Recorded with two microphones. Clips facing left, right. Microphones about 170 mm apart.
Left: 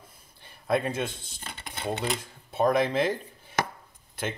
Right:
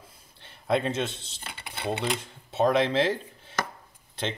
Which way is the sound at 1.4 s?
10° right (ahead or behind).